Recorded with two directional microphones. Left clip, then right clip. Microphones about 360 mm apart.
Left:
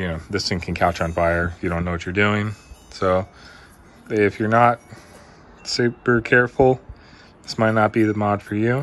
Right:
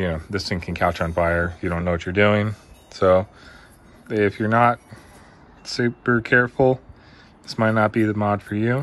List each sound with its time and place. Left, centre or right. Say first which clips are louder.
0.0 s speech: even; centre